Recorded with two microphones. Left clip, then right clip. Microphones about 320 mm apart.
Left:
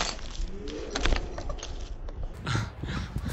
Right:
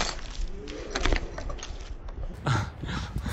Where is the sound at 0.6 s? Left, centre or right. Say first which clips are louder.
Right 1 dB; right.